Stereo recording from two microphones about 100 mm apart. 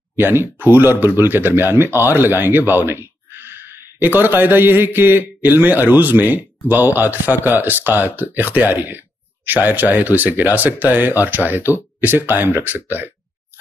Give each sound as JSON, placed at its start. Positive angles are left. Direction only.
{"t": 0.2, "sound": "a man's voice", "side_deg": -20}